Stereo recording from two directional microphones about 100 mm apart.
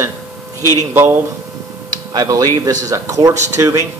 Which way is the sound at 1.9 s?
40° right (ahead or behind).